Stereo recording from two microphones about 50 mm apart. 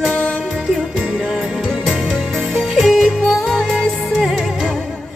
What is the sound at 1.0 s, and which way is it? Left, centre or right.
Music, centre.